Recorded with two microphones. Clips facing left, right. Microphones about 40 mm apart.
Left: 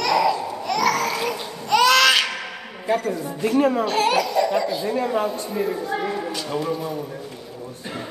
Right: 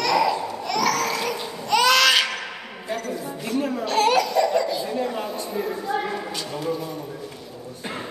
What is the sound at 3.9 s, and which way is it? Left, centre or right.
Laughter, centre.